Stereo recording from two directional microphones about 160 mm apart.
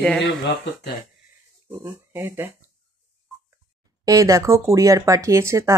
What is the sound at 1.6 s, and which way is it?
Speech, 15° right (ahead or behind).